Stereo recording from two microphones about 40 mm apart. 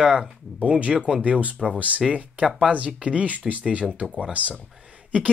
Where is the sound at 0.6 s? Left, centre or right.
Right.